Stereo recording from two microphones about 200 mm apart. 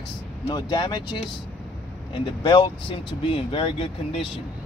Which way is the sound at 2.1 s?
25° left (ahead or behind).